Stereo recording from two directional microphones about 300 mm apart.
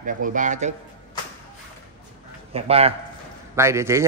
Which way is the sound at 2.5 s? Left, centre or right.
Centre.